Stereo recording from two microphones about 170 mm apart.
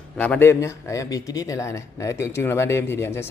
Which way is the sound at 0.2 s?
10° left (ahead or behind).